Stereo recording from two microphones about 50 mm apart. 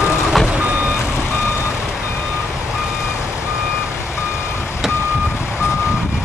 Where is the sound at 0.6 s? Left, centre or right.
Right.